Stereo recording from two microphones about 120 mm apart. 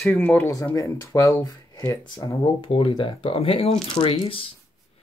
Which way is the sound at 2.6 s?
45° left (ahead or behind).